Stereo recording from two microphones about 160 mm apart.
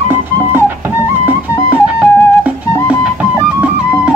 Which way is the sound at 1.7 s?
10° right (ahead or behind).